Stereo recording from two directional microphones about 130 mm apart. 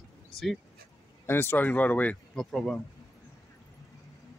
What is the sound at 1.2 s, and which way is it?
Speech, 20° left (ahead or behind).